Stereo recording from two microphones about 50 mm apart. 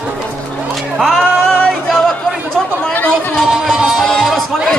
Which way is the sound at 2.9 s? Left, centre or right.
Left.